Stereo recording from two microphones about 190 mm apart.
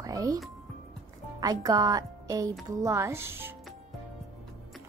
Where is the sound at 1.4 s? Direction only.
20° right (ahead or behind).